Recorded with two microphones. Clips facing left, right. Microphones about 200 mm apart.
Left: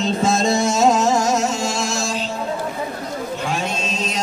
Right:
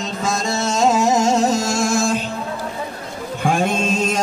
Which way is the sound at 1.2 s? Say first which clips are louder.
Right 3 dB; 30° right (ahead or behind).